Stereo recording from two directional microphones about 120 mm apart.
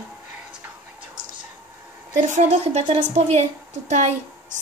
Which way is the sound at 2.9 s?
60° right (ahead or behind).